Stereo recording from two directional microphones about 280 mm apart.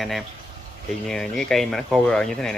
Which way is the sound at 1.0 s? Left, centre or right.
Centre.